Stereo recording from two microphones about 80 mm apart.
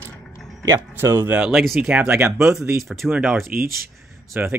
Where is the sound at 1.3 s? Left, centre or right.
Centre; by 2.8 s right.